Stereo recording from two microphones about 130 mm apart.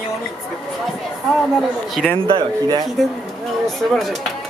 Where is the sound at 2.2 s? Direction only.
45° right (ahead or behind).